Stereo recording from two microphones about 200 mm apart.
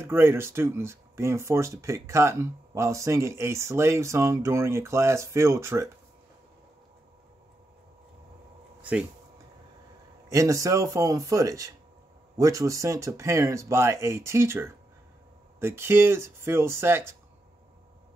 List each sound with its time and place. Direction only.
0.0 s speech: 10° right (ahead or behind)
10.3 s speech: 15° right (ahead or behind)